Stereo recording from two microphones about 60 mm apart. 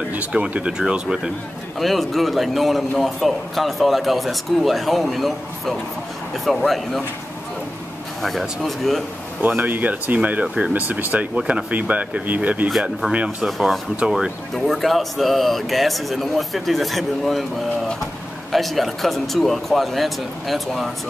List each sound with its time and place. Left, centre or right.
0.3 s speech: right
1.8 s a man's voice: centre
8.2 s a man's voice: centre
9.4 s speech: right
13.5 s a man's voice: centre
18.5 s a man's voice: centre